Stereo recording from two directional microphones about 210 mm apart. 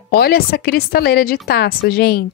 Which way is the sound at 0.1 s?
45° left (ahead or behind).